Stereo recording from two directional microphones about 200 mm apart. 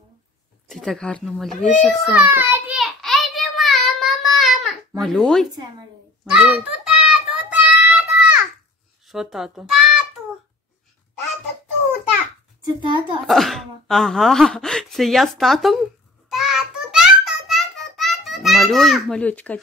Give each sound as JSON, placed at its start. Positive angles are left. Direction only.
{"t": 0.7, "sound": "speech", "side_deg": 0}
{"t": 2.1, "sound": "child singing", "side_deg": -10}
{"t": 6.2, "sound": "a sound", "side_deg": -5}
{"t": 9.0, "sound": "a child's voice", "side_deg": 0}
{"t": 12.8, "sound": "a child's voice", "side_deg": -25}
{"t": 13.3, "sound": "speech", "side_deg": 0}
{"t": 16.3, "sound": "a sound", "side_deg": 0}